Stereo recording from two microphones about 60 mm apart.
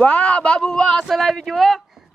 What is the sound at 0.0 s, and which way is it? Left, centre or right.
Speech, left.